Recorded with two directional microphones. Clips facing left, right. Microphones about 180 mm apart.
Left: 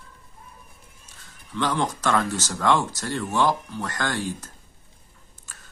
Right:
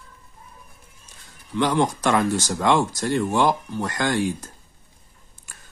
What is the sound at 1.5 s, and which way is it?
Speech, 15° right (ahead or behind).